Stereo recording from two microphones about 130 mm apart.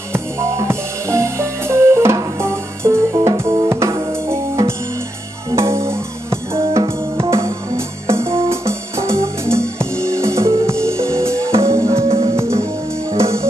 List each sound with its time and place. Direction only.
0.1 s music: 20° right (ahead or behind)